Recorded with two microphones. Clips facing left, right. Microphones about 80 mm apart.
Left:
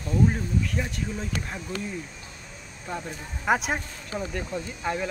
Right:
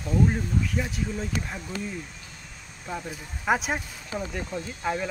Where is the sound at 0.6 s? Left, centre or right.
Centre.